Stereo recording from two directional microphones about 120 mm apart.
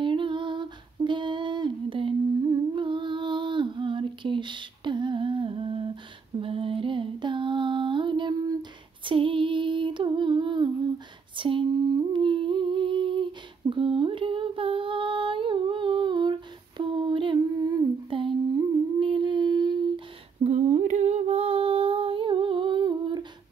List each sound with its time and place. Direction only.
0.0 s humming: 45° right (ahead or behind)
6.4 s music: 50° right (ahead or behind)
9.0 s female singing: 45° right (ahead or behind)
11.3 s humming: 45° right (ahead or behind)
18.9 s a sound: 45° right (ahead or behind)
20.4 s female singing: 70° right (ahead or behind); by 23.2 s 40° right (ahead or behind)